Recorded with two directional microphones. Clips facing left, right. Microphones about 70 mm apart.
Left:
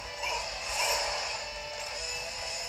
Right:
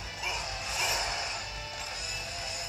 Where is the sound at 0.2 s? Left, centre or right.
Centre.